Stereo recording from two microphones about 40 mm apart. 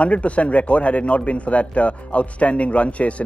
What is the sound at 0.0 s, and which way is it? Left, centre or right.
Speech, left.